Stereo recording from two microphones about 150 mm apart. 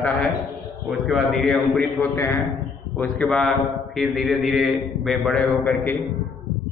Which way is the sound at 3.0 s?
5° left (ahead or behind).